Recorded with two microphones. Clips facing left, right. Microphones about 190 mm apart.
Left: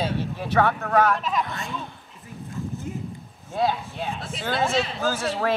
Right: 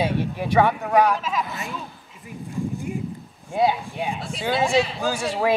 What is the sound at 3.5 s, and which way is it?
Speech, 15° right (ahead or behind).